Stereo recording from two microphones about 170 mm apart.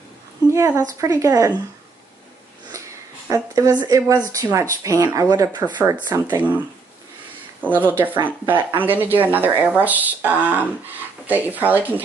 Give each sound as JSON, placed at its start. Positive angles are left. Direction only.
{"t": 0.5, "sound": "speech", "side_deg": -15}
{"t": 3.3, "sound": "speech", "side_deg": -20}
{"t": 7.7, "sound": "speech", "side_deg": -10}